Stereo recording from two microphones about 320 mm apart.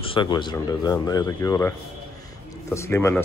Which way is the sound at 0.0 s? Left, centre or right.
Centre.